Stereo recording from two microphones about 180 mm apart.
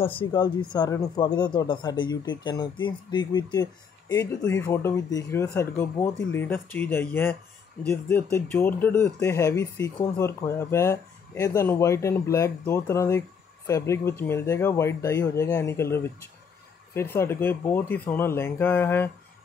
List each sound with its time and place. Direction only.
0.0 s speech: 30° left (ahead or behind); by 19.0 s 10° left (ahead or behind)